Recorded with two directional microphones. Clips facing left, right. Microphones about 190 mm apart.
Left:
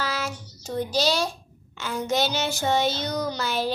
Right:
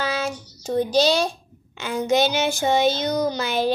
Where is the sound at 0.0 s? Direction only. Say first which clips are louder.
Right 4 dB; 20° right (ahead or behind).